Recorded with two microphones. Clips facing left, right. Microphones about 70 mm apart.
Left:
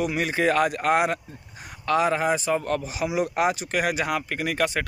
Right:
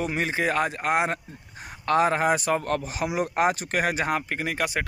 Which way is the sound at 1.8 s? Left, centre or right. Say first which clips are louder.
Right 1 dB; right.